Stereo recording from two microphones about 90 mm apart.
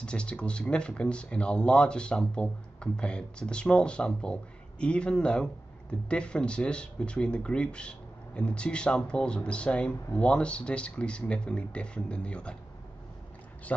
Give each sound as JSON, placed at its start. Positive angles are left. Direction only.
{"t": 0.0, "sound": "speech", "side_deg": 10}
{"t": 13.7, "sound": "speech", "side_deg": 15}